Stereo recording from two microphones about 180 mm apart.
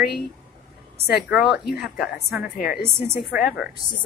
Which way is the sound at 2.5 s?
55° left (ahead or behind).